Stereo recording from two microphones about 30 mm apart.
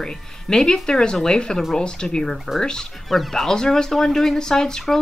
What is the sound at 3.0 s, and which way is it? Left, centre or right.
Speech, centre.